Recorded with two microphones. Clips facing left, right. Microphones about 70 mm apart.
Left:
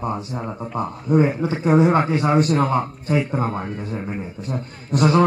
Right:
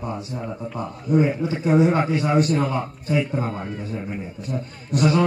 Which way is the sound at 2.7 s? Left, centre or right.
Left.